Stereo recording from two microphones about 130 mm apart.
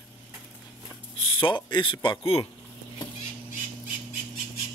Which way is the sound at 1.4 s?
40° left (ahead or behind).